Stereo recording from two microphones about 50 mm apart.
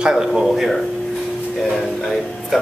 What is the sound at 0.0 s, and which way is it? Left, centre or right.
Speech, centre.